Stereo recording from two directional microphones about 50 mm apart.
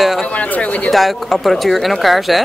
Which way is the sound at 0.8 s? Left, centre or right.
Centre.